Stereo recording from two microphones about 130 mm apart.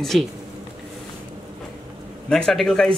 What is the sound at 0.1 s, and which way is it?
Speech, centre (ahead or behind).